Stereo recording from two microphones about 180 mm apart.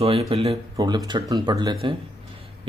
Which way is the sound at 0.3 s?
35° right (ahead or behind).